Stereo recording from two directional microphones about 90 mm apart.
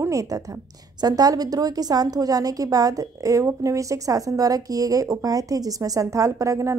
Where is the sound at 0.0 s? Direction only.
40° right (ahead or behind).